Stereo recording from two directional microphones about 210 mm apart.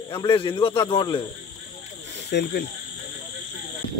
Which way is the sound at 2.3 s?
50° left (ahead or behind).